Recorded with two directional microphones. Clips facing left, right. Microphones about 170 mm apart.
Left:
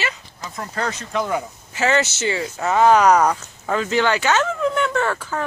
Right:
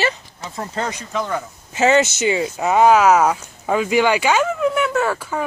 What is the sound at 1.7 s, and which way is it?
Speech, 20° right (ahead or behind).